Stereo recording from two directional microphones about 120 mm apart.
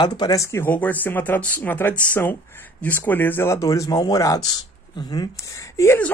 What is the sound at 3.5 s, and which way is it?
Speech, 30° left (ahead or behind).